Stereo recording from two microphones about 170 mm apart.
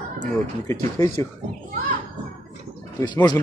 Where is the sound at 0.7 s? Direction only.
15° left (ahead or behind).